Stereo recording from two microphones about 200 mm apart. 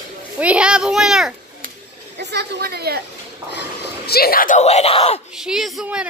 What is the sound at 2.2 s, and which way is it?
Speech, 55° right (ahead or behind).